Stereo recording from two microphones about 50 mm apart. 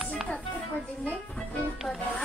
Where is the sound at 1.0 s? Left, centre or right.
Left.